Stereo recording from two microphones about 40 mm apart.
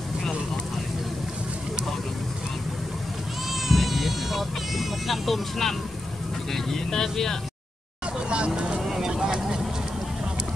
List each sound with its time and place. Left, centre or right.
3.6 s vehicle: centre
6.5 s speech: centre
8.3 s vehicle: right
8.8 s vehicle: centre